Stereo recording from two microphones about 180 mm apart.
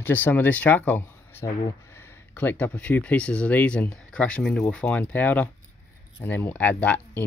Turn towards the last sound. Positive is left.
turn(degrees=10)  # may be behind; listen again after turning